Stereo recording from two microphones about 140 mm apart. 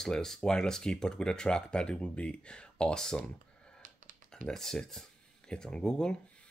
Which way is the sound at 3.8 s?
65° right (ahead or behind).